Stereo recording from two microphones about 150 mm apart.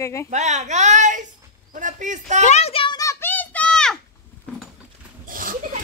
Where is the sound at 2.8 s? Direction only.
25° left (ahead or behind); by 3.9 s 5° left (ahead or behind).